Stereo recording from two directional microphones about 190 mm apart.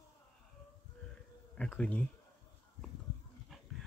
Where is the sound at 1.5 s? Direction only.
5° left (ahead or behind).